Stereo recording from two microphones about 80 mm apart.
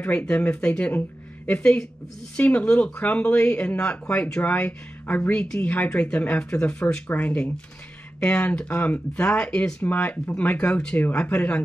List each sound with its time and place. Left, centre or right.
0.0 s speech: centre